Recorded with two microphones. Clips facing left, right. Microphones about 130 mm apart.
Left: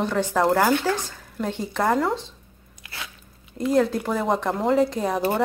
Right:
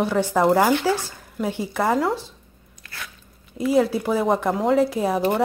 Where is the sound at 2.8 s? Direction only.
20° left (ahead or behind).